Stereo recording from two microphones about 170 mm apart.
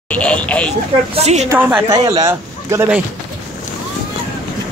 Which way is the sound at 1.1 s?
40° right (ahead or behind).